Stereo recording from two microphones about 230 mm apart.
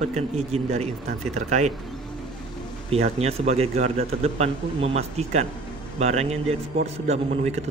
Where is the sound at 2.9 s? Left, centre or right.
Right.